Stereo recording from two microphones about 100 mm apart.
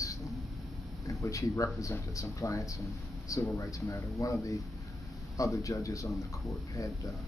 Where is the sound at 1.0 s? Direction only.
30° left (ahead or behind).